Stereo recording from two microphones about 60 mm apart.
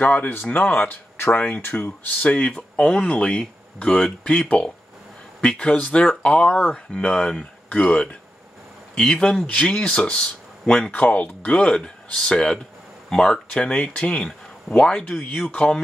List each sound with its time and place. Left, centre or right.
0.0 s speech: left
7.1 s speech: centre
7.7 s speech: left
10.9 s speech: left; by 13.4 s centre
13.6 s speech: centre
15.1 s speech: left